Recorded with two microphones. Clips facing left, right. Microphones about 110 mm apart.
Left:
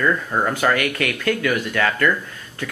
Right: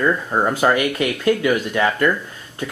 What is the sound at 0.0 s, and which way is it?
Speech, 20° right (ahead or behind).